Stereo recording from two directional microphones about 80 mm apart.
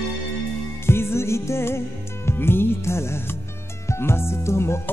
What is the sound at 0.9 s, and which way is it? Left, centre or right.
Music, left.